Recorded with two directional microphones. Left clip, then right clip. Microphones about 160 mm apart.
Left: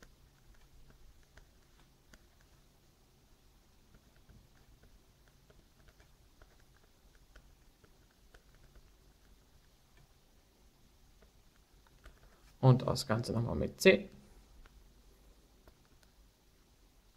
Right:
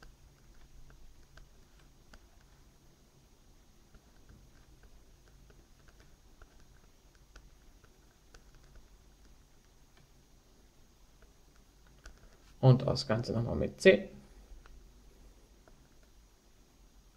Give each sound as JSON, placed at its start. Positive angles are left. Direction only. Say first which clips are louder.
{"t": 12.5, "sound": "speech", "louder": "right 2 dB", "side_deg": 25}